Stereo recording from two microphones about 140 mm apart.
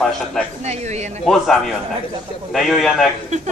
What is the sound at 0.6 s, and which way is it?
Speech, 55° right (ahead or behind).